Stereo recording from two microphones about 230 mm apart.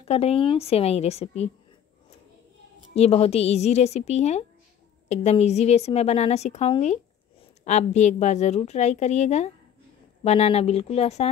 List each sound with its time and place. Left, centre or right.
0.0 s a woman's voice: left
2.9 s a woman's voice: left